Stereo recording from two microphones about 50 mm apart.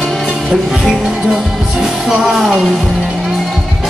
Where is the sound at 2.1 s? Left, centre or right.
Centre.